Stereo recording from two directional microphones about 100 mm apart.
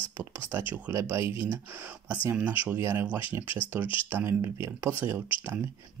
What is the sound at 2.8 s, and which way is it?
Speech, 25° right (ahead or behind).